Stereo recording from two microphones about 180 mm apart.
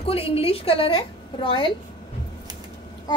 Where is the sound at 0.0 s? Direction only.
30° left (ahead or behind).